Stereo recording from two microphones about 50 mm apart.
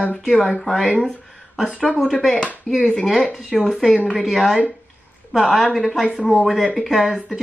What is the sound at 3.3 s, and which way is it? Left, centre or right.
Speech, centre.